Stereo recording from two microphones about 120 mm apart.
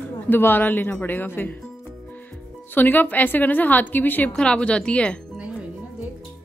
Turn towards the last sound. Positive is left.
turn(degrees=10)  # may be behind; listen again after turning